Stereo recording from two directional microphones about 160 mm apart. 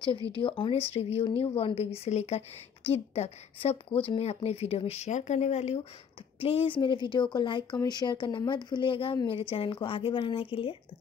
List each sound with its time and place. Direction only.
0.4 s speech: 35° left (ahead or behind)